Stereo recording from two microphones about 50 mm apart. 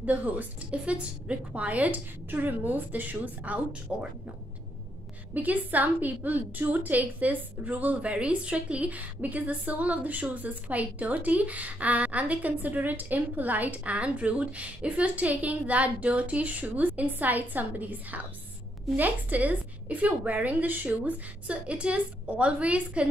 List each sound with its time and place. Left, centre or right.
0.0 s speech: right
5.3 s speech: right